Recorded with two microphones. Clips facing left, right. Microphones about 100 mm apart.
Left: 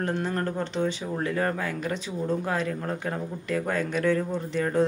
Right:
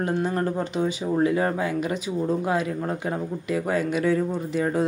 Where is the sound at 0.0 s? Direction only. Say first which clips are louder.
Right 3 dB; 10° right (ahead or behind).